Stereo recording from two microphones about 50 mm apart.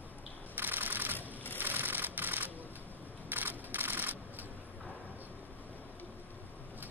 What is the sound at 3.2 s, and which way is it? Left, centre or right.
Camera, right.